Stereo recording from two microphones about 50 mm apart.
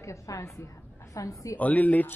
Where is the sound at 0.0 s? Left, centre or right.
Left.